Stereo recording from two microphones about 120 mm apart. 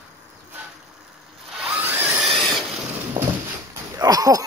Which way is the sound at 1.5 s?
10° right (ahead or behind).